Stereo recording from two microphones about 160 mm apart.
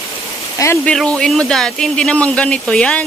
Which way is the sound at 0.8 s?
5° left (ahead or behind).